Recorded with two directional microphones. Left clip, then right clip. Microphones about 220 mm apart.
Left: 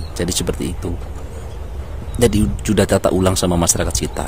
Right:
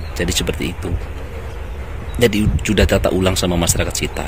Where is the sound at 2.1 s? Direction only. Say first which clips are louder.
Right 1 dB; 15° left (ahead or behind).